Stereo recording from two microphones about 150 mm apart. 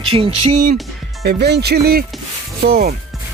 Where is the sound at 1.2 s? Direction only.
90° right.